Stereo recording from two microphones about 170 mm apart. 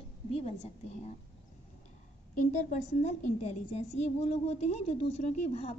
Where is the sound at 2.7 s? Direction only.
45° left (ahead or behind).